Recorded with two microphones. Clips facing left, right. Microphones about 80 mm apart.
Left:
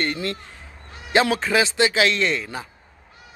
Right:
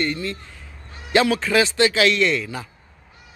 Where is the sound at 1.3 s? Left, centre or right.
Left.